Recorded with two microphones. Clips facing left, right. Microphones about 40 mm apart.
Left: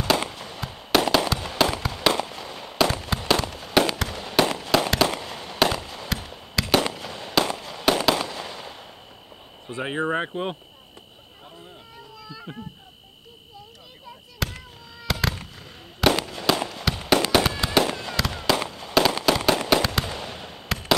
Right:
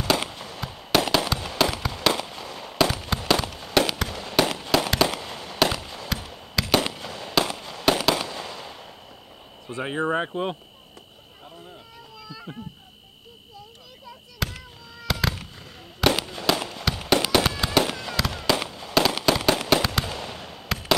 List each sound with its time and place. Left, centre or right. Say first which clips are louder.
0.0 s fireworks: left 1 dB; centre
9.8 s speech: even; centre
12.5 s speech: even; left
14.4 s fireworks: even; centre